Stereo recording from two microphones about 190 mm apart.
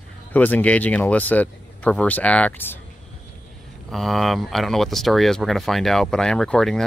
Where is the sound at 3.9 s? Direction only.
Centre (ahead or behind).